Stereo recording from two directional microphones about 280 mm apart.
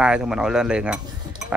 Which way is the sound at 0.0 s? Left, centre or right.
Centre.